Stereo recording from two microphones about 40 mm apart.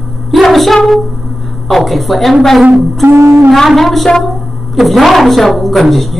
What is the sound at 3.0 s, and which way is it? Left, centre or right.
Shofar, right.